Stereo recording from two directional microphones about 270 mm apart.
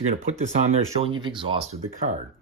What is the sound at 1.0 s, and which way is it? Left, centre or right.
Speech, centre.